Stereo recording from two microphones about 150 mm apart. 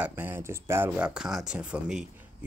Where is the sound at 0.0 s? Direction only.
15° right (ahead or behind).